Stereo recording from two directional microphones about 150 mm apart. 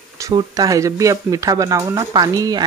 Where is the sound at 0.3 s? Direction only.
25° right (ahead or behind).